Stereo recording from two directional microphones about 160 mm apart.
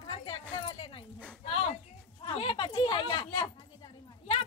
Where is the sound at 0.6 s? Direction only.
35° left (ahead or behind).